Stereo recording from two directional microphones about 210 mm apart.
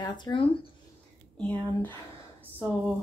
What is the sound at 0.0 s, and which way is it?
Speech, 20° left (ahead or behind).